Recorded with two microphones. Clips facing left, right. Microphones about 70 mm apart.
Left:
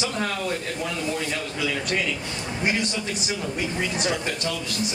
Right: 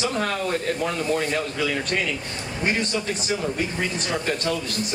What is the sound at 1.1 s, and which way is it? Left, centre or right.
Speech, right.